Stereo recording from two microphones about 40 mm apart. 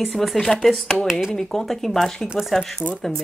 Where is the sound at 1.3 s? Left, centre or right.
Centre.